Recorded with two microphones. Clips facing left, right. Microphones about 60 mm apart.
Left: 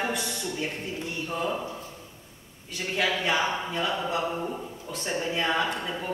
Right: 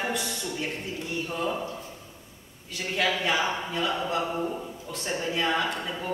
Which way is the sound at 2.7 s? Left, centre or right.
Centre.